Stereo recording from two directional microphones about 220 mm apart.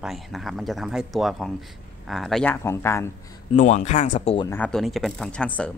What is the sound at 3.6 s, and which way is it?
Speech, 30° left (ahead or behind).